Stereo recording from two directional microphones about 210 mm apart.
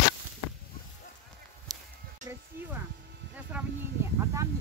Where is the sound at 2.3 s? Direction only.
10° right (ahead or behind).